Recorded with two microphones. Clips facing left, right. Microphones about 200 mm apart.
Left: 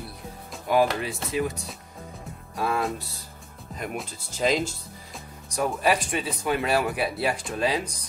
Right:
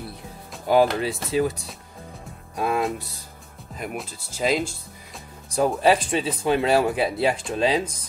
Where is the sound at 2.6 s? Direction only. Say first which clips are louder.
Right 3 dB; 20° right (ahead or behind).